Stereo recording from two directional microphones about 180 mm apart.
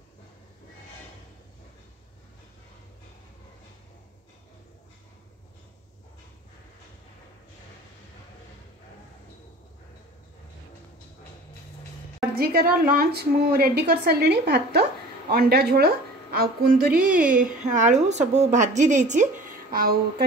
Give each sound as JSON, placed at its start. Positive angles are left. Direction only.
{"t": 12.4, "sound": "a woman's voice", "side_deg": -55}
{"t": 19.7, "sound": "a woman's voice", "side_deg": -55}